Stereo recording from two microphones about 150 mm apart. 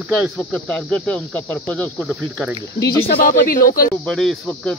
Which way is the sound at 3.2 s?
70° left (ahead or behind).